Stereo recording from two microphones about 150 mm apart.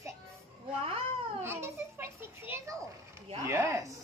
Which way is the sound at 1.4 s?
15° right (ahead or behind).